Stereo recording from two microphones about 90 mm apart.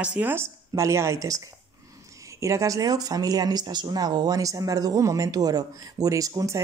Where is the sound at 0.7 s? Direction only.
35° right (ahead or behind).